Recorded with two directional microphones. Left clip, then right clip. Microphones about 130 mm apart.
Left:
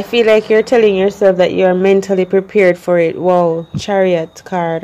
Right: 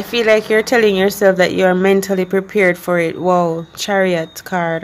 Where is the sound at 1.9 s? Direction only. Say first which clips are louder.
Left 3 dB; 20° left (ahead or behind).